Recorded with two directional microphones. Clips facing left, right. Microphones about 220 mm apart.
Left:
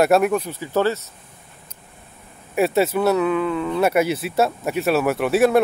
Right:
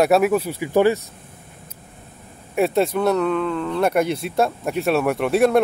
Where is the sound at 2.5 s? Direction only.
5° left (ahead or behind).